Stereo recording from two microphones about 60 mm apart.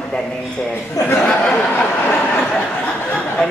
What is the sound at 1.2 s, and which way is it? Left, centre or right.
Speech, centre.